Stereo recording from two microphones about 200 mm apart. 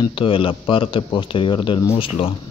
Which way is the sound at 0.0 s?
25° left (ahead or behind).